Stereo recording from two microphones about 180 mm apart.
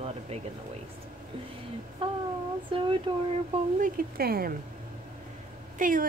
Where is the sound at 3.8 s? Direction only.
55° right (ahead or behind).